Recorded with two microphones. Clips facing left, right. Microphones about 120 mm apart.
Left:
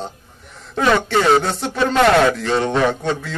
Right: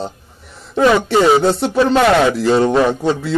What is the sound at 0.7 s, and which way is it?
A man's voice, 10° right (ahead or behind).